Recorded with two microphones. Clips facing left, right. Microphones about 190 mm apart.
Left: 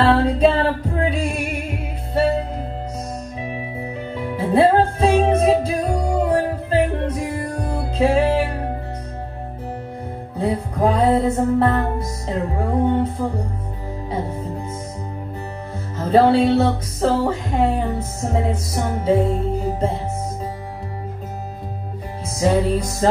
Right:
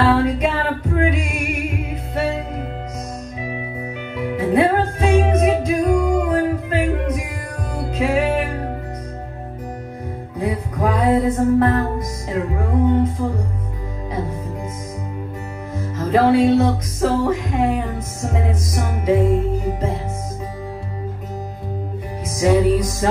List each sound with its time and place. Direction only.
0.0 s music: 30° left (ahead or behind)
4.2 s music: 30° left (ahead or behind)
10.3 s music: 30° left (ahead or behind)
16.0 s music: 30° left (ahead or behind)
22.4 s music: 30° left (ahead or behind)